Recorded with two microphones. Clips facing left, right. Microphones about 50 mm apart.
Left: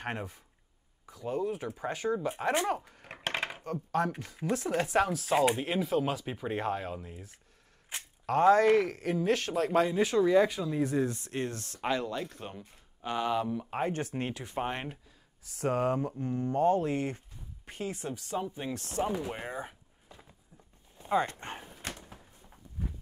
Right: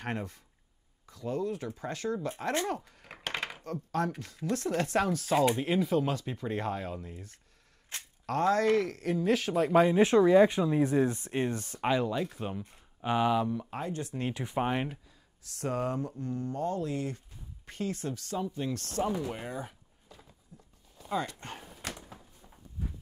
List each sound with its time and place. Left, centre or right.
0.0 s speech: centre
3.6 s speech: centre
9.9 s speech: right; by 12.7 s centre
12.7 s a sound: centre
13.3 s speech: centre
13.7 s speech: left
14.3 s speech: centre
14.7 s speech: centre
15.4 s speech: centre
15.7 s speech: left
17.6 s speech: centre
21.0 s speech: left